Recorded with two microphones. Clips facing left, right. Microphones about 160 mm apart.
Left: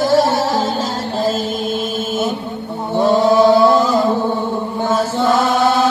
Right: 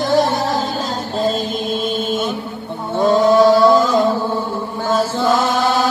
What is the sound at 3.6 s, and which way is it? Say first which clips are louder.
Music: even; centre (ahead or behind).